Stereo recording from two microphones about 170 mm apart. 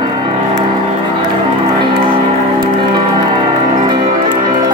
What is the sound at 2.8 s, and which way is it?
Music, 30° right (ahead or behind).